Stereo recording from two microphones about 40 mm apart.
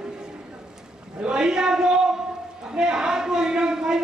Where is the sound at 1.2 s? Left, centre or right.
Right.